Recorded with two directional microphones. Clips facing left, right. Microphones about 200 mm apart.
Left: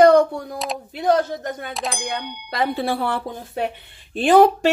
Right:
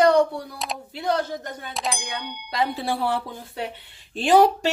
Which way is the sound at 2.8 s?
60° left (ahead or behind).